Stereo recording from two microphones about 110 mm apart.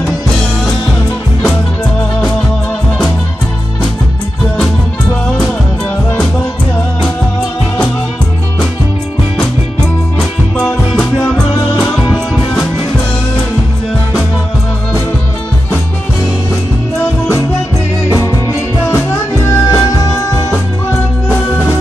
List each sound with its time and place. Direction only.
18.1 s music: 25° left (ahead or behind)